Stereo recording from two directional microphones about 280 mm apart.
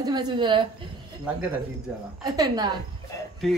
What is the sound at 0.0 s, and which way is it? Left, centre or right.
Speech, centre.